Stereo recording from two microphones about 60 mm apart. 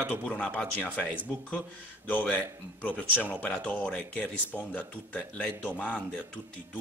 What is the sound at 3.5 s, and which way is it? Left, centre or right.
Speech, left.